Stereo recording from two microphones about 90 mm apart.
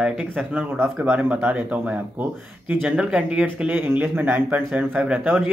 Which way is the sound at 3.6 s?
25° right (ahead or behind).